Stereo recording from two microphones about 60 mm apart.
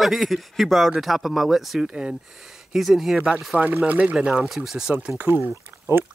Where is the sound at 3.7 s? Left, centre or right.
Right.